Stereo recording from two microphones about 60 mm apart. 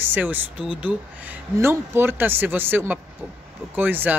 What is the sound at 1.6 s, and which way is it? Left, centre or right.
Speech, right.